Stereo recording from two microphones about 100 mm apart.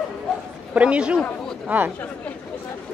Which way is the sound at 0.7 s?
10° right (ahead or behind).